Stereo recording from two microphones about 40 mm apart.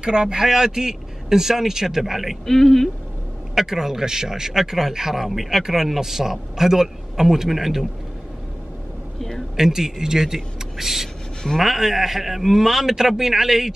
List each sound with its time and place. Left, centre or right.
0.0 s speech: centre
2.5 s speech: centre
3.5 s speech: centre
9.6 s speech: centre